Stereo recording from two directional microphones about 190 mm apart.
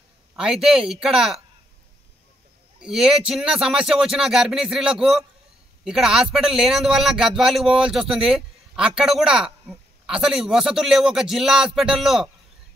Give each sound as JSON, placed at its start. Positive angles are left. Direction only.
{"t": 0.4, "sound": "a man's voice", "side_deg": -5}
{"t": 2.8, "sound": "a man's voice", "side_deg": -5}